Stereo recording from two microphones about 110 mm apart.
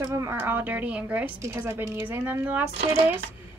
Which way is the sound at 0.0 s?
25° right (ahead or behind).